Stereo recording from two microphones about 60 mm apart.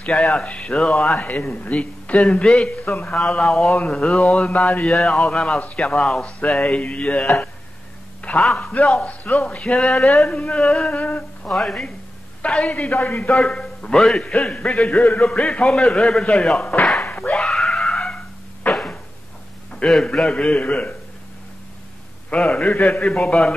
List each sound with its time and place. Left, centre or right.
0.0 s speech: centre
1.1 s a man's voice: left
3.3 s speech: centre
3.7 s a man's voice: centre
4.9 s a man's voice: centre
10.9 s a man's voice: left
11.4 s a man's voice: centre
12.9 s speech: left
13.3 s a man's voice: centre
17.4 s screaming: centre
18.7 s a sound: centre
19.8 s a man's voice: centre
22.3 s a man's voice: left